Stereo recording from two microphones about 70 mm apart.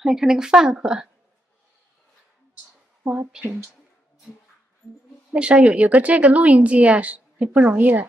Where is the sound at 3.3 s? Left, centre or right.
Centre.